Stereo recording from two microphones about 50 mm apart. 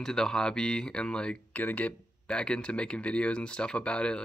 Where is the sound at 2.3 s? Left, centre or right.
Centre.